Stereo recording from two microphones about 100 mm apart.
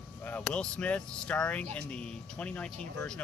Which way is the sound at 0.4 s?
10° left (ahead or behind).